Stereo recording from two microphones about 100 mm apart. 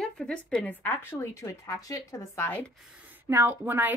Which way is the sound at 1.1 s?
30° left (ahead or behind).